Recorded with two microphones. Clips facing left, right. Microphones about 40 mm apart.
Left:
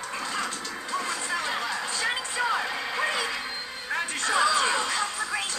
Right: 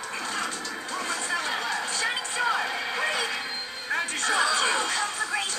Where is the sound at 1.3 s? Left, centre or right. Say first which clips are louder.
Right 1 dB; centre.